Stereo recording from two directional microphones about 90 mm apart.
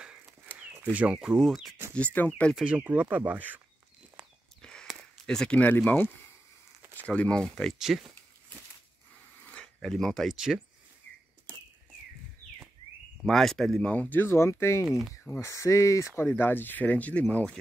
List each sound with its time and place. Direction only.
0.6 s speech: 15° right (ahead or behind)
1.5 s speech: centre (ahead or behind)
2.1 s speech: 15° left (ahead or behind)
2.5 s speech: 15° right (ahead or behind)
4.6 s a sound: 10° left (ahead or behind)
5.6 s speech: 20° left (ahead or behind)
7.8 s speech: 5° right (ahead or behind)
9.5 s speech: 10° left (ahead or behind)
13.2 s speech: 5° left (ahead or behind); by 14.9 s 30° left (ahead or behind)
14.9 s speech: 10° right (ahead or behind)
15.4 s speech: 35° left (ahead or behind); by 17.5 s 15° left (ahead or behind)